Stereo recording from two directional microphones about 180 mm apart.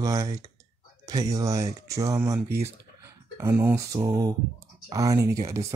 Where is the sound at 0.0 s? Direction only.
20° right (ahead or behind).